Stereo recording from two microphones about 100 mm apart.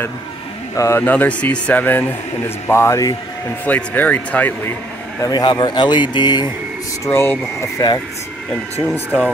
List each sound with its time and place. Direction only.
0.7 s speech: 25° left (ahead or behind)
1.0 s speech: 15° left (ahead or behind); by 3.2 s 30° left (ahead or behind)
3.6 s speech: 15° left (ahead or behind)
5.2 s speech: 45° left (ahead or behind)
7.1 s speech: 25° left (ahead or behind)
8.9 s speech: 15° left (ahead or behind)